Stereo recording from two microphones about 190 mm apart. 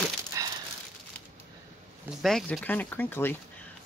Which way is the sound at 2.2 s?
Centre (ahead or behind).